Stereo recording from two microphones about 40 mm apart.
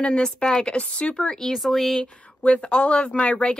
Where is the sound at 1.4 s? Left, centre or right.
Centre.